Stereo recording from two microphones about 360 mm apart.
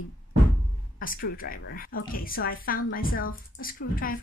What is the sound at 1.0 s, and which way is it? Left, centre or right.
A woman's voice, left.